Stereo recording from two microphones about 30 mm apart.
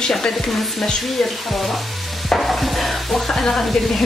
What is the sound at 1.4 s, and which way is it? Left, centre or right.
Sizzle, centre.